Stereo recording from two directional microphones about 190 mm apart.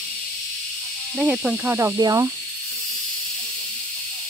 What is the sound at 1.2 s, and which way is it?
Speech, 5° right (ahead or behind).